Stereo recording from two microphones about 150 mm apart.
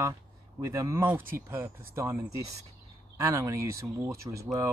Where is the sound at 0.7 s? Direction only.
20° right (ahead or behind).